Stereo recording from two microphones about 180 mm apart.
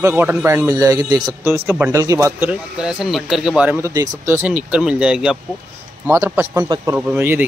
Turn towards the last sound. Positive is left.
turn(degrees=-10)  # may be behind; listen again after turning